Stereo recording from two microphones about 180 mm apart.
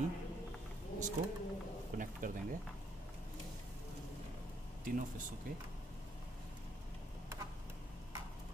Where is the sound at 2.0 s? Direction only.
50° right (ahead or behind).